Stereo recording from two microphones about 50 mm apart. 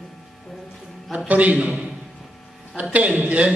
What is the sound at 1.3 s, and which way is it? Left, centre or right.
Speech, right.